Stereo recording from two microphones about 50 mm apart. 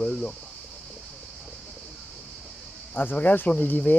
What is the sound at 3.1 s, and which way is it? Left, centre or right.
Speech, left.